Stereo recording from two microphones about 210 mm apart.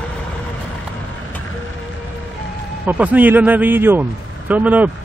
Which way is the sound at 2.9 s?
10° right (ahead or behind).